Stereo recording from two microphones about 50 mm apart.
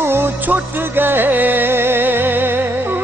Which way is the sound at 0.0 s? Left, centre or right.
Right.